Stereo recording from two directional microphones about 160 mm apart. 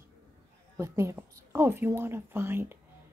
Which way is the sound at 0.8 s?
15° right (ahead or behind).